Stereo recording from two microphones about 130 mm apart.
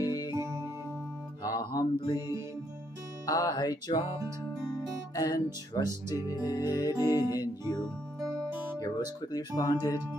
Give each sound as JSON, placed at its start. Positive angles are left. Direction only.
{"t": 0.0, "sound": "music", "side_deg": 30}
{"t": 0.3, "sound": "music", "side_deg": -20}
{"t": 1.4, "sound": "music", "side_deg": 30}
{"t": 2.1, "sound": "music", "side_deg": -20}
{"t": 3.3, "sound": "speech", "side_deg": 30}
{"t": 5.1, "sound": "speech", "side_deg": 30}
{"t": 6.9, "sound": "music", "side_deg": -20}
{"t": 7.2, "sound": "music", "side_deg": 30}
{"t": 8.7, "sound": "speech", "side_deg": 30}
{"t": 9.6, "sound": "music", "side_deg": 30}